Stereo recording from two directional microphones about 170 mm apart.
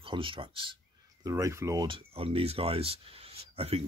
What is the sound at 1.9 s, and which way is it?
Speech, 35° right (ahead or behind).